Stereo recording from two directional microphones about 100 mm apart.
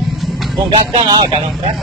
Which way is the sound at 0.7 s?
70° right (ahead or behind).